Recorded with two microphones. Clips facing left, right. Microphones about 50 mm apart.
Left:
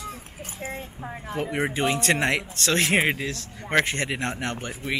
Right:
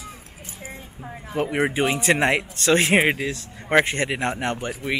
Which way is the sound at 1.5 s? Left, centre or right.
Centre.